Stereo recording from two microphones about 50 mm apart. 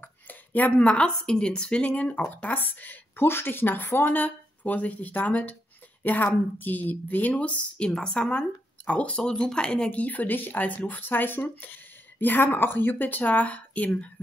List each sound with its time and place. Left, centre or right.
0.0 s a woman's voice: left